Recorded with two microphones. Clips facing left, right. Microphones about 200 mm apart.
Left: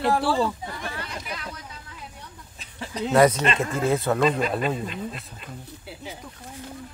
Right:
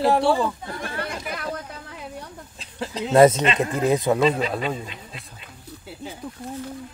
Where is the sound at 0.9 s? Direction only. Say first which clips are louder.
Right 5 dB; 55° right (ahead or behind).